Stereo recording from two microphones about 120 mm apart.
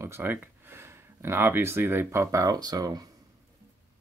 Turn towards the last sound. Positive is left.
turn(degrees=-30)  # may be behind; listen again after turning